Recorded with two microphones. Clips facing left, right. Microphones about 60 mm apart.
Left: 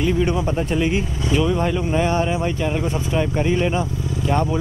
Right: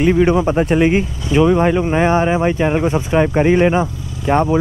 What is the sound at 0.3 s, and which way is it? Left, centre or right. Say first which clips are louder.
Speech: right 7 dB; right.